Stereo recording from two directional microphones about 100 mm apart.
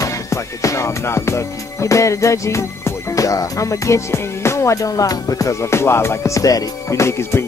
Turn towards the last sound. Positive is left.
turn(degrees=25)  # may be behind; listen again after turning